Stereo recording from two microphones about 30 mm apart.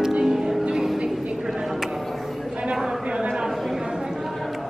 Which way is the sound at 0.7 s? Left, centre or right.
Centre.